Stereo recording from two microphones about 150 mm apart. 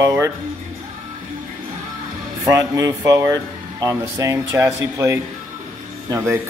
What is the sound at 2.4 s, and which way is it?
A man's voice, 20° right (ahead or behind).